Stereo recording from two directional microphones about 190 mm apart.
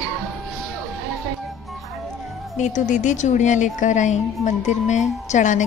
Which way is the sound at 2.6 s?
40° left (ahead or behind).